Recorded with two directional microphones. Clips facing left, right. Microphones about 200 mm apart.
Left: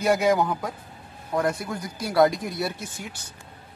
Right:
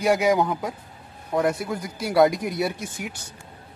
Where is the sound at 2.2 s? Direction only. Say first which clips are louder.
Right 1 dB; 20° right (ahead or behind).